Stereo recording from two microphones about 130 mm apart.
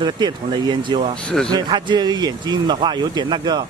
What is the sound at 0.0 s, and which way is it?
Speech, 35° right (ahead or behind).